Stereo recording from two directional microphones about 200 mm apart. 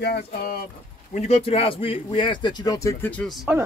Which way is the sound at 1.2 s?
30° left (ahead or behind).